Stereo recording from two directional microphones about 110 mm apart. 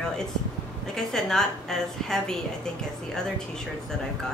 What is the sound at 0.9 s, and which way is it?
A woman's voice, 5° left (ahead or behind).